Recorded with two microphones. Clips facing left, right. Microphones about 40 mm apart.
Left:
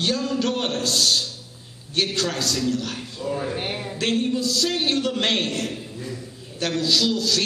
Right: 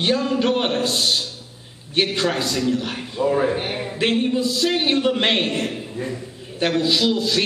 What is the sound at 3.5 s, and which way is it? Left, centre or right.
Speech, centre.